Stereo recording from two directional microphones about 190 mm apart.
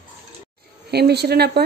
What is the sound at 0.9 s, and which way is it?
Speech, 60° right (ahead or behind).